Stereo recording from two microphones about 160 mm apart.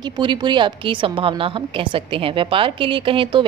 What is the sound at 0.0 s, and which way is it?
A woman's voice, 30° right (ahead or behind).